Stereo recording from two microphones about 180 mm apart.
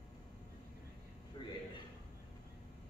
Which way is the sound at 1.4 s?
25° left (ahead or behind).